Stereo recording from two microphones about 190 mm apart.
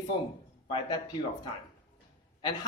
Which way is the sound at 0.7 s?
25° left (ahead or behind).